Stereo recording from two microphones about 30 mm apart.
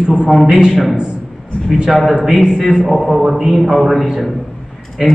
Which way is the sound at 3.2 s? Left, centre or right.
Centre.